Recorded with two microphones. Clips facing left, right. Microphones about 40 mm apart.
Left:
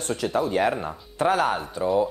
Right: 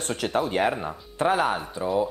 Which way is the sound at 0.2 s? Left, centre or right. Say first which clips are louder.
Left 1 dB; right.